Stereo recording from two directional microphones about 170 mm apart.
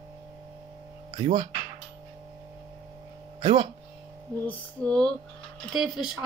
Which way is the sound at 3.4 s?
25° right (ahead or behind).